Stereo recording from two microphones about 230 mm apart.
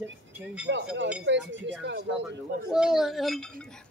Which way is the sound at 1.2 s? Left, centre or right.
Right.